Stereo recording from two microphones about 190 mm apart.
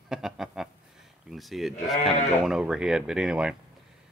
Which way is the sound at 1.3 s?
Centre (ahead or behind).